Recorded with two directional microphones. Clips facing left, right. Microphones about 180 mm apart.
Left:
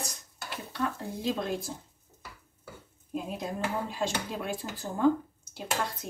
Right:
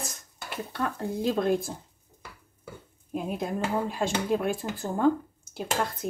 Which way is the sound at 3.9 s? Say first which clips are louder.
Right 6 dB; 55° right (ahead or behind).